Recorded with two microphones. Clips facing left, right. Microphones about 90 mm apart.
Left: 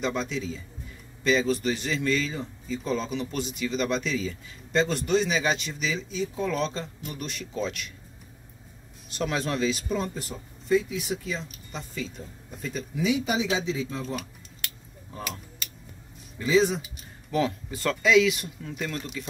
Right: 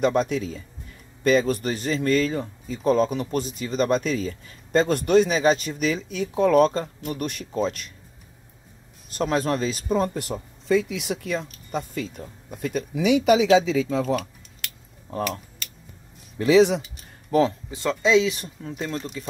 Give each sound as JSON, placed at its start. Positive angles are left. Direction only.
{"t": 0.0, "sound": "speech", "side_deg": -50}
{"t": 9.1, "sound": "speech", "side_deg": -45}
{"t": 10.1, "sound": "speech", "side_deg": -70}
{"t": 16.3, "sound": "speech", "side_deg": -70}
{"t": 17.3, "sound": "speech", "side_deg": -40}
{"t": 17.6, "sound": "speech", "side_deg": -20}